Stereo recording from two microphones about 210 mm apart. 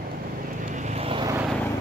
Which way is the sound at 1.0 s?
25° right (ahead or behind).